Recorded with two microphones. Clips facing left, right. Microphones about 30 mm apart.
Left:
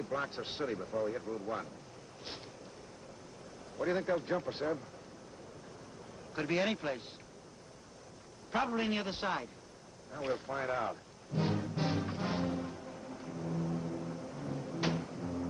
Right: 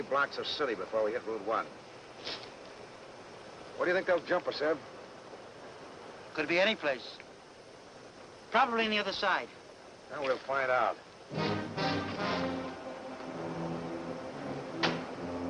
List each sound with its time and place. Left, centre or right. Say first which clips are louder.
0.0 s speech: right 6 dB; right
3.7 s speech: right 4 dB; right
6.3 s speech: right 4 dB; right
8.5 s speech: right 5 dB; right
10.1 s music: right 5 dB; right